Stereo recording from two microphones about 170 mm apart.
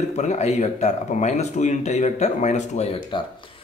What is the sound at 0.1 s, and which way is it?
Speech, 40° left (ahead or behind).